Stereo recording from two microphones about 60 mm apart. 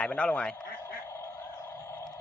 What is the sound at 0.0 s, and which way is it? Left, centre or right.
Speech, centre.